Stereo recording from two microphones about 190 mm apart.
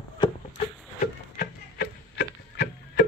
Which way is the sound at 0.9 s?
50° left (ahead or behind).